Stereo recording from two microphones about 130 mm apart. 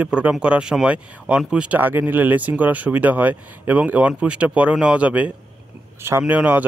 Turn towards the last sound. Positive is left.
turn(degrees=-10)  # may be behind; listen again after turning